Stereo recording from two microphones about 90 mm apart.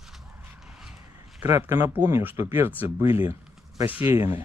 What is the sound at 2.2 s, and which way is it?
Speech, 25° right (ahead or behind).